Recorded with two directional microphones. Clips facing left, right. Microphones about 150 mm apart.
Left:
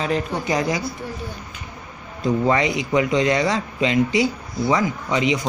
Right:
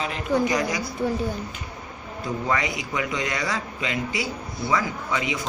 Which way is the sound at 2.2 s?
25° left (ahead or behind).